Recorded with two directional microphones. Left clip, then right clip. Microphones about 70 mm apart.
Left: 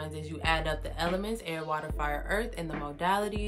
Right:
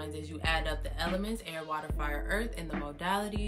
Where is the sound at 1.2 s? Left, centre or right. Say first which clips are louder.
Left 4 dB; left.